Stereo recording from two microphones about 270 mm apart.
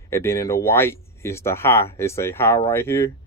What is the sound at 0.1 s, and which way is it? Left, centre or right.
Speech, centre.